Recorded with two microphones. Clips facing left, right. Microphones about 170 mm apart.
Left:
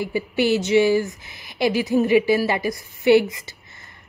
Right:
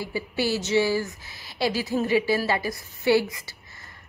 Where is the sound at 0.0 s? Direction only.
20° left (ahead or behind).